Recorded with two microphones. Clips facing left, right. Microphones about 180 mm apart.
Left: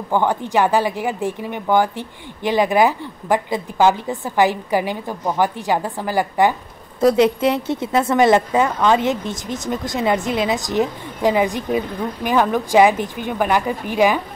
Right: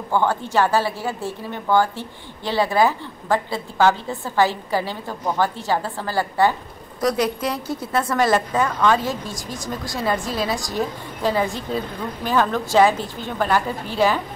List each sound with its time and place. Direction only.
0.1 s speech: 15° left (ahead or behind)
7.0 s a woman's voice: 25° left (ahead or behind)